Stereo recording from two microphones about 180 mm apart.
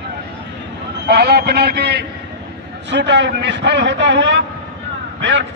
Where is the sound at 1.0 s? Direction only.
65° right (ahead or behind).